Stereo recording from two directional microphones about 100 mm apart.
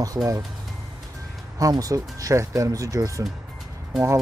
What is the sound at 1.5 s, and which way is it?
Speech, 35° right (ahead or behind).